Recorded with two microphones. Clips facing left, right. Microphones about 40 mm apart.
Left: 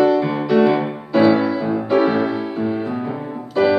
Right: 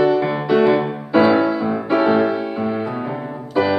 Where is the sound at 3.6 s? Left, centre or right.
Centre.